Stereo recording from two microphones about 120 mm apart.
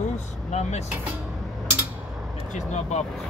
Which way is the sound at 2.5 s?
75° left (ahead or behind).